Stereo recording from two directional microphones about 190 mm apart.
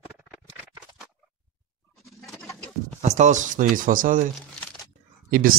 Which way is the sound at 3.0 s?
40° right (ahead or behind).